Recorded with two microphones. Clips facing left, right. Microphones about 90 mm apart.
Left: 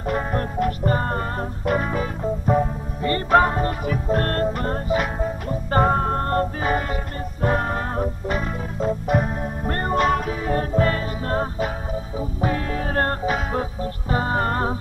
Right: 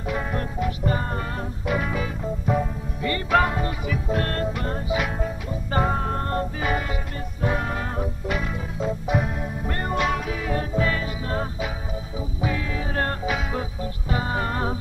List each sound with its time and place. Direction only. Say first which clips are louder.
0.0 s music: left 4 dB; 45° left (ahead or behind)